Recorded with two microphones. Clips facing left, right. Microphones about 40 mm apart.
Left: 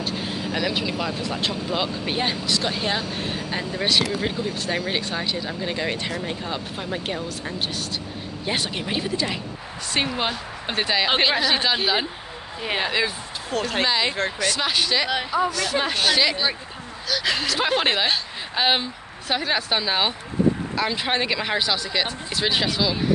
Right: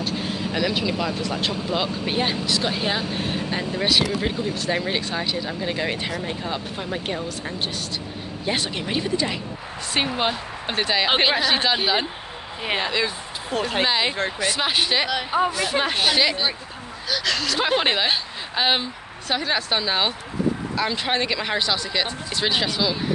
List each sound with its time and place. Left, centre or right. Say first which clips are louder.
0.0 s speech: right 1 dB; centre
13.5 s speech: right 1 dB; centre
17.2 s speech: left 1 dB; centre
17.5 s speech: right 1 dB; centre